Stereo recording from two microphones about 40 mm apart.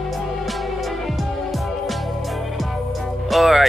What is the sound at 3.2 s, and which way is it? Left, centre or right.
Music, centre.